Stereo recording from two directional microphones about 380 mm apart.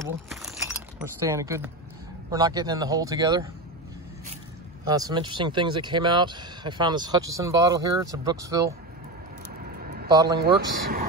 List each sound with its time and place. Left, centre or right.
0.0 s a sound: centre
2.3 s speech: centre
4.8 s speech: centre
10.2 s speech: right